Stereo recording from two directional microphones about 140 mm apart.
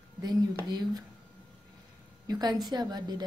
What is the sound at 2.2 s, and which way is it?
A woman's voice, 30° right (ahead or behind).